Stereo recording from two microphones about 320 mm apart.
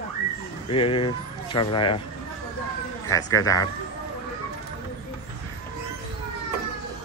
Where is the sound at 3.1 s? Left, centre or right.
Centre.